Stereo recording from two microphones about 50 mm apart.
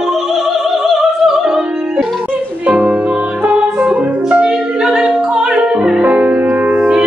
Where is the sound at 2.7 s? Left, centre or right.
Right.